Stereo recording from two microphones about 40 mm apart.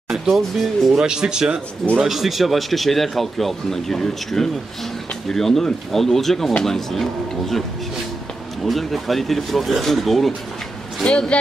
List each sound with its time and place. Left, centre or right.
0.1 s speech: centre
0.9 s speech: centre
2.0 s speech: centre
8.6 s speech: centre
11.1 s speech: left